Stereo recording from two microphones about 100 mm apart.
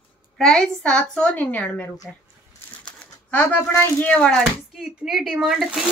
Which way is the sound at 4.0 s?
10° left (ahead or behind).